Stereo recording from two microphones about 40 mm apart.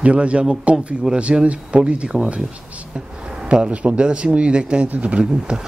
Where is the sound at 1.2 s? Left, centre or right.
Right.